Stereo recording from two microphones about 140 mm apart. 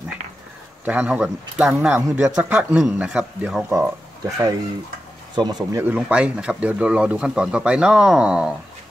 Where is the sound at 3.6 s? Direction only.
20° right (ahead or behind).